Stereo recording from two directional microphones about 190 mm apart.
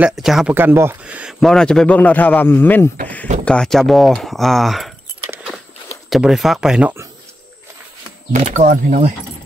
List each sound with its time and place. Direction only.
0.0 s speech: centre (ahead or behind)
6.0 s speech: centre (ahead or behind)
8.3 s speech: 40° right (ahead or behind)